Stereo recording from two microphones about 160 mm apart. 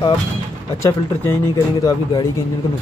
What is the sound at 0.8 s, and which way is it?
Speech, 15° left (ahead or behind).